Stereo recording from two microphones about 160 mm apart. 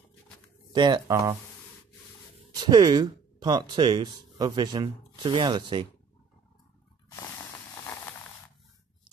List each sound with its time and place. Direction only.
0.7 s speech: 25° right (ahead or behind)
2.5 s speech: 25° right (ahead or behind)